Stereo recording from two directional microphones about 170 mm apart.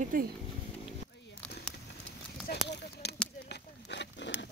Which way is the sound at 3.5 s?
90° left.